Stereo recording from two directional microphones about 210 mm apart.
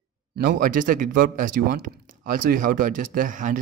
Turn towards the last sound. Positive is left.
turn(degrees=-40)  # may be behind; listen again after turning